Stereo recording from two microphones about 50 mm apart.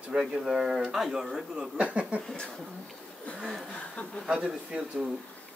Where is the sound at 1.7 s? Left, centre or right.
Right.